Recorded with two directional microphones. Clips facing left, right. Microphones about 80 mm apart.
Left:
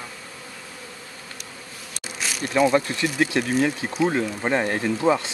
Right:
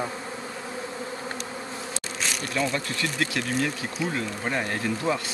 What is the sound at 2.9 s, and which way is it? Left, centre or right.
Speech, left.